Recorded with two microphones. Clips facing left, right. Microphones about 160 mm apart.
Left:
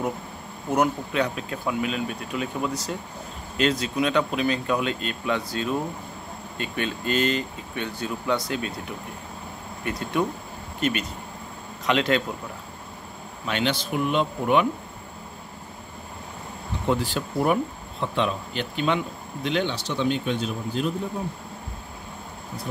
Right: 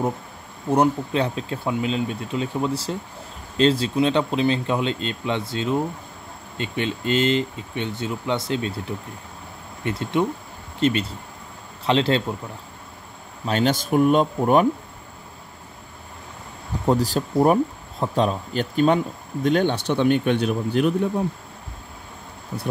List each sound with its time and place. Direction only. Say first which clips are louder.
0.7 s speech: right 4 dB; 30° right (ahead or behind)
13.5 s speech: right 5 dB; 40° right (ahead or behind)
16.8 s speech: right 4 dB; 40° right (ahead or behind); by 20.9 s 65° right (ahead or behind)